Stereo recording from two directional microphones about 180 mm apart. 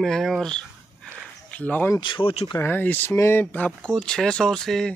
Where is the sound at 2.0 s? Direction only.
25° left (ahead or behind).